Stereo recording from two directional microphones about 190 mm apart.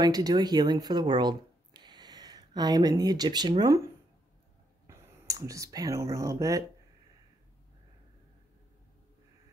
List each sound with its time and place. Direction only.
0.0 s speech: 20° right (ahead or behind)